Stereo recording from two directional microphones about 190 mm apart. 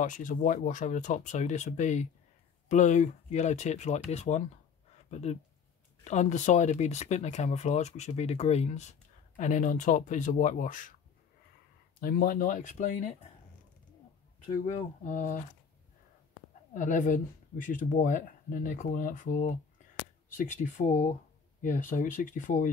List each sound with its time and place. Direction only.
0.0 s speech: 45° left (ahead or behind)
12.0 s speech: 50° left (ahead or behind)
14.5 s speech: 40° left (ahead or behind)
16.7 s speech: 40° left (ahead or behind)
20.6 s speech: 40° left (ahead or behind)